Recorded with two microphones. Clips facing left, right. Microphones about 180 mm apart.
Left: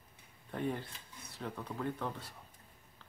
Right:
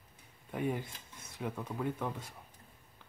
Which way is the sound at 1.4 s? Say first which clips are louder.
Right 2 dB; 10° right (ahead or behind).